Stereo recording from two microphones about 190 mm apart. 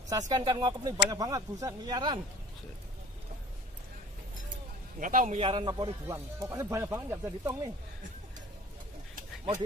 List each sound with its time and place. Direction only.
0.3 s speech: 20° right (ahead or behind)
5.0 s a man's voice: 45° right (ahead or behind)
5.4 s speech: 25° right (ahead or behind)
6.1 s speech: 10° right (ahead or behind)